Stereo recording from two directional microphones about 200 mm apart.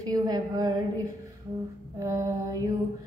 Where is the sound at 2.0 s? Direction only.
15° right (ahead or behind).